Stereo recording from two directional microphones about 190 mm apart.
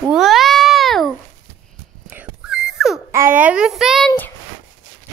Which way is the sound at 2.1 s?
5° right (ahead or behind).